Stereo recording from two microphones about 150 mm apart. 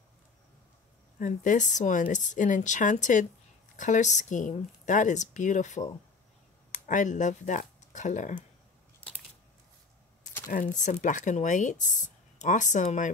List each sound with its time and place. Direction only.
1.2 s speech: 60° left (ahead or behind)
10.5 s speech: 60° left (ahead or behind)